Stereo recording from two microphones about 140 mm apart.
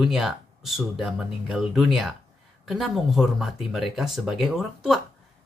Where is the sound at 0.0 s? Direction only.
Centre (ahead or behind).